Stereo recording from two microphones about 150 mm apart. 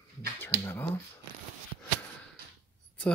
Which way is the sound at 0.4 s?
15° left (ahead or behind).